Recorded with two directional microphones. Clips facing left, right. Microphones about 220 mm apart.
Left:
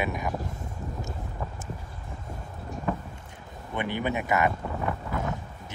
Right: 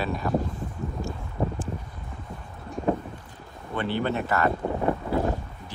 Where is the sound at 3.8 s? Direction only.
15° left (ahead or behind).